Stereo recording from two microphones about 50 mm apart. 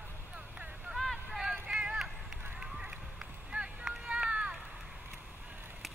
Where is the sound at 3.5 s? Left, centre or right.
Centre.